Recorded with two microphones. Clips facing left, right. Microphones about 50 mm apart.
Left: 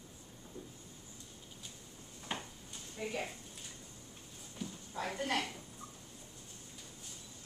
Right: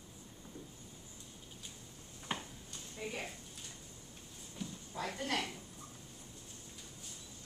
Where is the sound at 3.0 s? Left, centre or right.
Centre.